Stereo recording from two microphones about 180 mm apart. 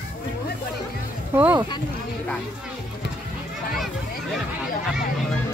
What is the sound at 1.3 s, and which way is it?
Speech, 10° right (ahead or behind).